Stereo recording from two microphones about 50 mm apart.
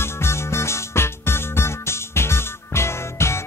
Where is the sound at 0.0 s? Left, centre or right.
Left.